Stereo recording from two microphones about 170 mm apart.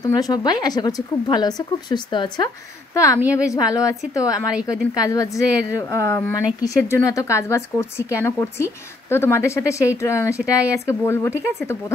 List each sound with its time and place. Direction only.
0.0 s a woman's voice: 25° left (ahead or behind)